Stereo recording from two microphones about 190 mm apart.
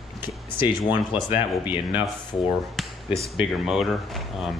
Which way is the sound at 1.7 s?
10° right (ahead or behind).